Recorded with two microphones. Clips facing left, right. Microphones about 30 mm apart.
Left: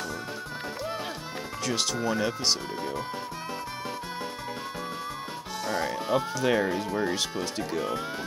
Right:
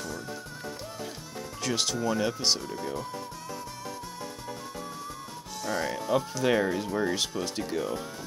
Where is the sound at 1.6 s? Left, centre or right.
Centre.